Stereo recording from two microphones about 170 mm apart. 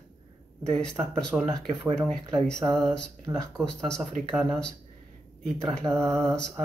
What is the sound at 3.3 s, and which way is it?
Mantra, 15° right (ahead or behind).